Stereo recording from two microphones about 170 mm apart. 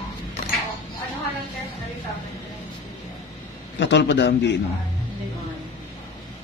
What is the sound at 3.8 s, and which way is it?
Speech, 90° left.